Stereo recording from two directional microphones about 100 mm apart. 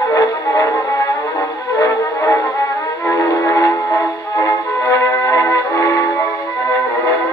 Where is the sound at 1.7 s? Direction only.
30° left (ahead or behind).